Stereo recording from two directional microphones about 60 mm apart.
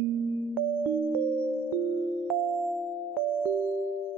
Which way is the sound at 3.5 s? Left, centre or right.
Centre.